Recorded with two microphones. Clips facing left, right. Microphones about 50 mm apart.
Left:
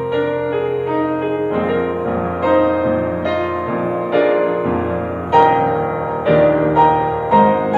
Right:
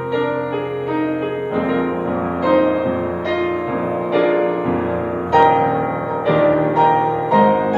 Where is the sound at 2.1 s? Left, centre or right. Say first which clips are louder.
Left 1 dB; centre.